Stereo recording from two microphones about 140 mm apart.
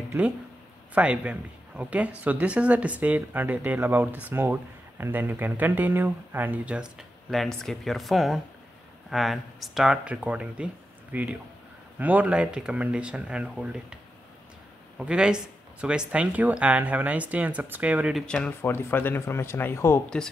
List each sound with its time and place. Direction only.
0.9 s speech: 10° right (ahead or behind)
15.0 s speech: 5° right (ahead or behind)
18.2 s speech: 5° left (ahead or behind)